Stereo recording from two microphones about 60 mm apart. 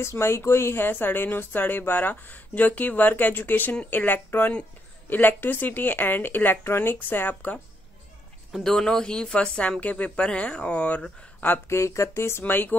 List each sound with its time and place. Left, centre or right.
0.0 s a woman's voice: left
8.5 s speech: centre; by 11.0 s left
11.7 s speech: left